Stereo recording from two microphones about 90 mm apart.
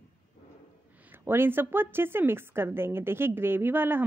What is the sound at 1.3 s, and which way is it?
A woman's voice, 25° right (ahead or behind).